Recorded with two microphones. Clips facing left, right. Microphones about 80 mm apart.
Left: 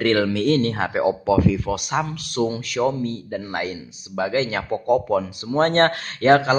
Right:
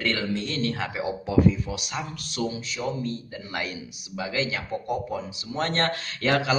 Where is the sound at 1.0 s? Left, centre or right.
Left.